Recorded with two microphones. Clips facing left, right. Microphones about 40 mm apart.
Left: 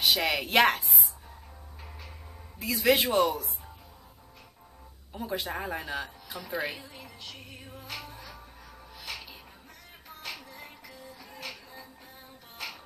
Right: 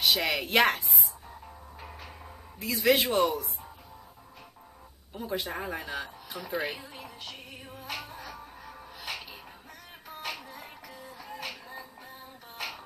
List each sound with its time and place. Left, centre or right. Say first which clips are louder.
0.0 s a woman's voice: even; centre
1.8 s music: right 3 dB; right
2.6 s speech: even; centre
5.1 s speech: even; centre
6.8 s speech: right 2 dB; centre
7.9 s music: right 3 dB; right